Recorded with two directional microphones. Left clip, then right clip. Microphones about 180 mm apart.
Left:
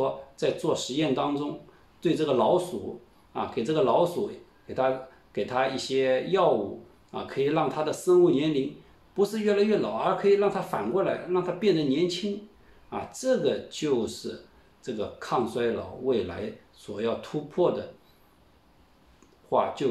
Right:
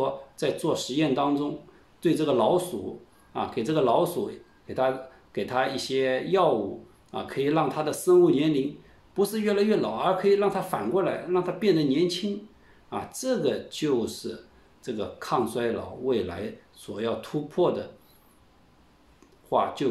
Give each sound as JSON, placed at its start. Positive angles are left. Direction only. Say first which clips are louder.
{"t": 0.0, "sound": "speech", "louder": "even", "side_deg": -25}
{"t": 19.5, "sound": "speech", "louder": "even", "side_deg": -25}